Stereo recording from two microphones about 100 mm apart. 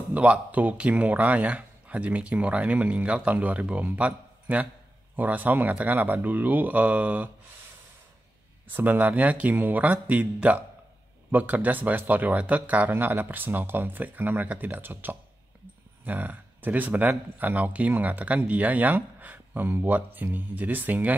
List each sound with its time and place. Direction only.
0.1 s speech: 15° right (ahead or behind)
8.6 s speech: 15° right (ahead or behind)